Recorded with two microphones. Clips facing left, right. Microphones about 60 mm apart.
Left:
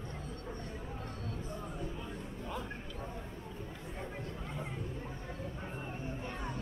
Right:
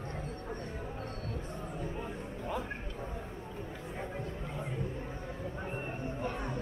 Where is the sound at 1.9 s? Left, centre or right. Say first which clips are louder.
Right 3 dB; right.